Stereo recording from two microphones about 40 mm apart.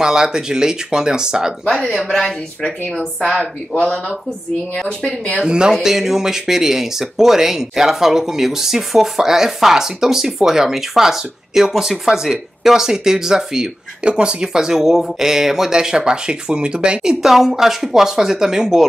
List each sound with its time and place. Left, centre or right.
0.0 s speech: centre
1.9 s speech: centre
3.3 s speech: left
5.4 s speech: centre
14.0 s speech: right
17.2 s speech: centre